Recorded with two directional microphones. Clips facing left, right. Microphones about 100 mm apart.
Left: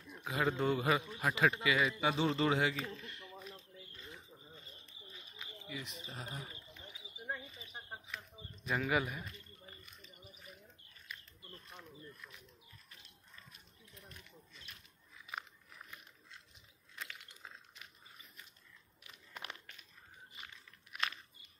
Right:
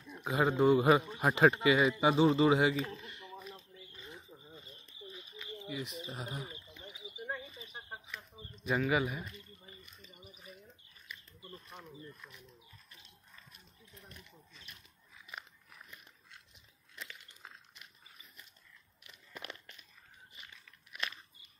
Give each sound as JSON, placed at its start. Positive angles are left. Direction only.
{"t": 0.1, "sound": "a man's voice", "side_deg": -20}
{"t": 5.7, "sound": "speech", "side_deg": -20}
{"t": 6.1, "sound": "wild animals", "side_deg": -15}
{"t": 8.6, "sound": "speech", "side_deg": -5}
{"t": 11.8, "sound": "speech", "side_deg": -10}